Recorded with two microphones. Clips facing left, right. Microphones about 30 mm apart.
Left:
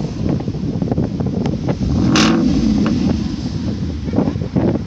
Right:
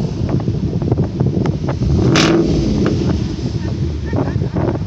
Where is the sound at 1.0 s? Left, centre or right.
Centre.